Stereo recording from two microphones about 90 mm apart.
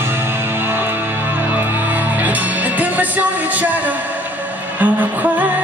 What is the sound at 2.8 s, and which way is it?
Music, 15° right (ahead or behind).